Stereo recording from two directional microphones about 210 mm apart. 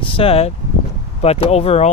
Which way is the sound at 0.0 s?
25° left (ahead or behind).